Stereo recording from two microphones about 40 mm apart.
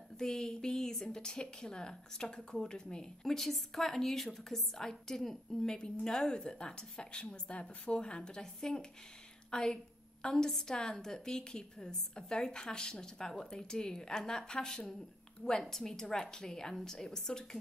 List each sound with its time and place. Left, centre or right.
0.2 s a woman's voice: centre
3.3 s a woman's voice: centre